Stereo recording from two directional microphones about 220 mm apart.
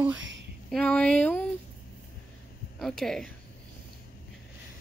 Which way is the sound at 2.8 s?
Centre (ahead or behind).